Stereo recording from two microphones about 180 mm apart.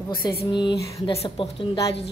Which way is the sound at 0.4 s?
25° left (ahead or behind).